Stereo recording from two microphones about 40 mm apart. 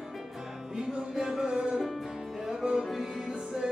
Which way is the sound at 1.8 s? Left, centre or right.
Centre.